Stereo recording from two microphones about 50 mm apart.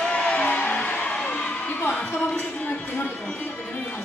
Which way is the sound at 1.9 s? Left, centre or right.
Left.